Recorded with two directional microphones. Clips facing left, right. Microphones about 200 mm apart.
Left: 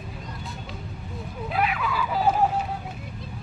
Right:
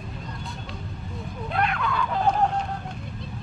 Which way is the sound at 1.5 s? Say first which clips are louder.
Even; 5° left (ahead or behind).